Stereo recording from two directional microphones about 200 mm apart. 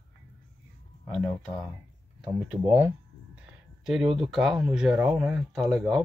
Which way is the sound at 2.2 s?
10° right (ahead or behind).